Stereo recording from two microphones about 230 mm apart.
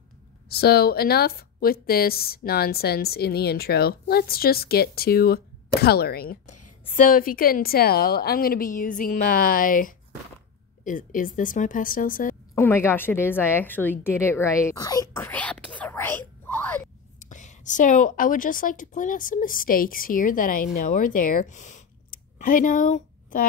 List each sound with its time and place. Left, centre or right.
0.5 s a woman's voice: left
12.5 s speech: centre
17.2 s a woman's voice: left